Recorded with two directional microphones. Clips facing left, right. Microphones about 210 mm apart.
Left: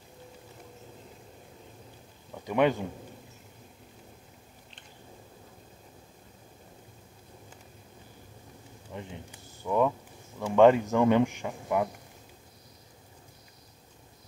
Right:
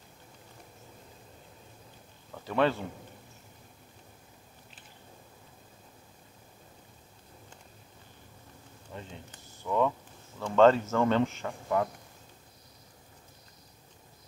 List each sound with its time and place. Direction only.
2.3 s a man's voice: 15° left (ahead or behind)
8.9 s a man's voice: 15° left (ahead or behind)